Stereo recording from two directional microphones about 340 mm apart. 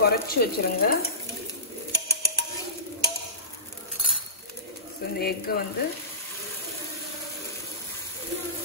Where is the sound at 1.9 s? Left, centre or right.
Centre.